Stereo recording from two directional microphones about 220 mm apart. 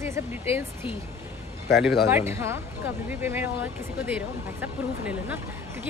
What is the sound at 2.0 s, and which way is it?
Speech, 10° right (ahead or behind).